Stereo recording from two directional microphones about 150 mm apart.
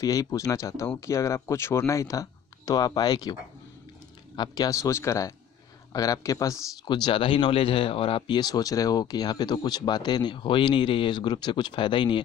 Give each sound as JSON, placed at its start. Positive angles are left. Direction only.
{"t": 0.0, "sound": "a man's voice", "side_deg": 25}
{"t": 4.4, "sound": "a man's voice", "side_deg": 25}